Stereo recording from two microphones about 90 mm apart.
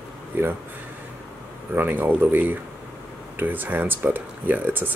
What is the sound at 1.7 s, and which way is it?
Speech, 20° right (ahead or behind).